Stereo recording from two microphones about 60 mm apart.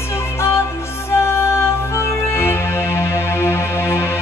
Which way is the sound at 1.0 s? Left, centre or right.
Left.